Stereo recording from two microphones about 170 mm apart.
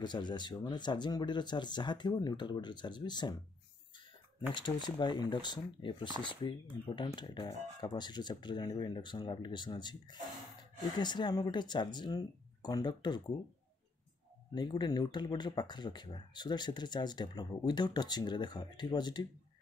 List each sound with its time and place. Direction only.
0.0 s speech: 25° left (ahead or behind)
4.6 s speech: 25° left (ahead or behind)
14.5 s speech: 25° left (ahead or behind)